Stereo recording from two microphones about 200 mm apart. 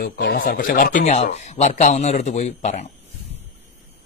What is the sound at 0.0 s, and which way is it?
Speech, 55° left (ahead or behind).